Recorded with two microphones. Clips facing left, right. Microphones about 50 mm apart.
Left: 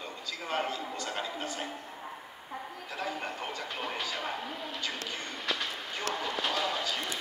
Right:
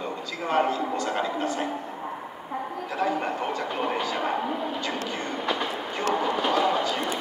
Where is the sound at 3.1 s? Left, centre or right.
Right.